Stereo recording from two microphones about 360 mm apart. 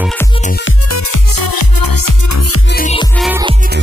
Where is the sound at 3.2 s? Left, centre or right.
Centre.